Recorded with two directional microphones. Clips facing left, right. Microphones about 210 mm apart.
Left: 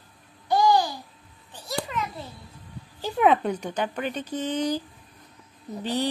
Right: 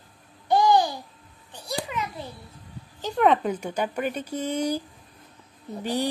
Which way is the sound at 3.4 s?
10° right (ahead or behind).